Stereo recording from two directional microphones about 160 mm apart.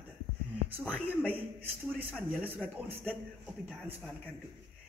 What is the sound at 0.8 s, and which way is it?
A man's voice, 10° right (ahead or behind).